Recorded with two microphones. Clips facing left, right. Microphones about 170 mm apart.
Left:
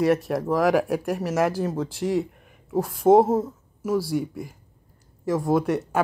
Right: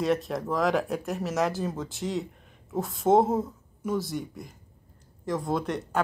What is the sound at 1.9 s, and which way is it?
Speech, 90° left.